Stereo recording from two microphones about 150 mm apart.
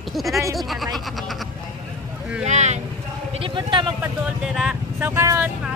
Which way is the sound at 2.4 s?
50° right (ahead or behind).